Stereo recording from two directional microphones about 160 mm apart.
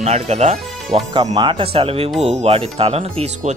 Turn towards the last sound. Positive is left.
turn(degrees=-40)  # may be behind; listen again after turning